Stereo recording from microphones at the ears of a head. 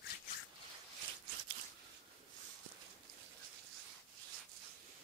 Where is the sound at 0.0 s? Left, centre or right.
Left.